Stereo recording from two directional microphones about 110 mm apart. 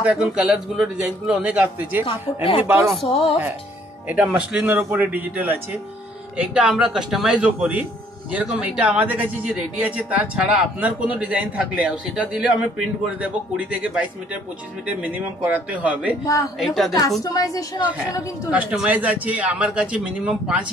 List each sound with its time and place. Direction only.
0.0 s speech: 10° right (ahead or behind)
2.0 s speech: 60° left (ahead or behind)
4.1 s speech: 15° right (ahead or behind)
16.5 s a woman's voice: centre (ahead or behind)
17.2 s a woman's voice: 35° left (ahead or behind)
18.6 s speech: 15° right (ahead or behind)